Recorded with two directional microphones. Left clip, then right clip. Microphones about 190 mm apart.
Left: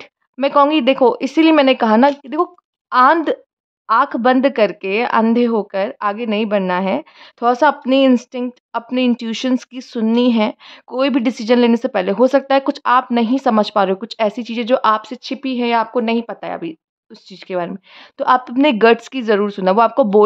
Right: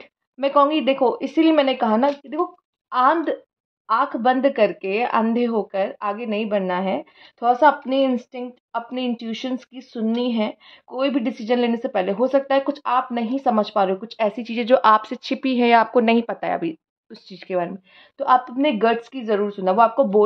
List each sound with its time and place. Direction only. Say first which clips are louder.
0.4 s speech: left 4 dB; 35° left (ahead or behind)
18.1 s speech: left 3 dB; 40° left (ahead or behind)